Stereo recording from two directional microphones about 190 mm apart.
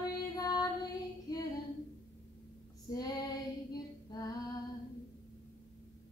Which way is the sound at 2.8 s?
20° left (ahead or behind).